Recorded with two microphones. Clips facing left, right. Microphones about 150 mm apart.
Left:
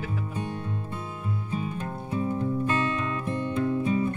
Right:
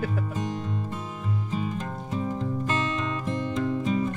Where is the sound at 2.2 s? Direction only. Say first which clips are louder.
Left 3 dB; 25° right (ahead or behind).